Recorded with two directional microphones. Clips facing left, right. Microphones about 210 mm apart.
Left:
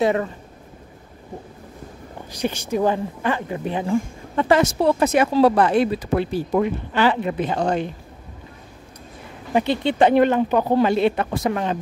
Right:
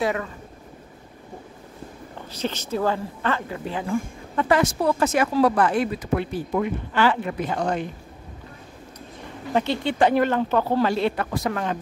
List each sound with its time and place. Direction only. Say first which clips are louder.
0.0 s speech: left 5 dB; 30° left (ahead or behind)
2.3 s a woman's voice: left 4 dB; 10° left (ahead or behind); by 7.9 s 30° left (ahead or behind)
9.5 s a woman's voice: left 3 dB; 15° left (ahead or behind)